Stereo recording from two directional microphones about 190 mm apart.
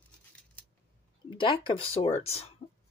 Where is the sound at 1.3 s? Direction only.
25° left (ahead or behind).